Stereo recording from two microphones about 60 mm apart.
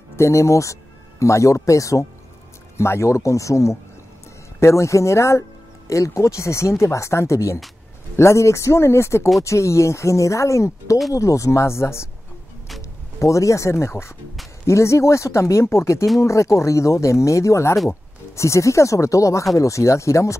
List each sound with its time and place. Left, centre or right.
0.1 s speech: left
2.8 s speech: left
13.2 s speech: left